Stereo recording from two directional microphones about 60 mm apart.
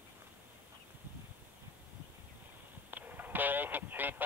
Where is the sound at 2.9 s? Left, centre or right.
Right.